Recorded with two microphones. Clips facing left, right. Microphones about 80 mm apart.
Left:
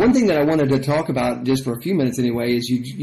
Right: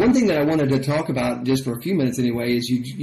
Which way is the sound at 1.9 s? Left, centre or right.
Left.